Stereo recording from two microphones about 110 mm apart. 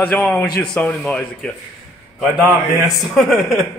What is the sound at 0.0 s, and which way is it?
A man's voice, 10° left (ahead or behind).